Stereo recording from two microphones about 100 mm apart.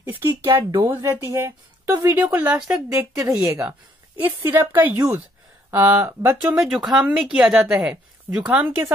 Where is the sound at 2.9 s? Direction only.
25° right (ahead or behind).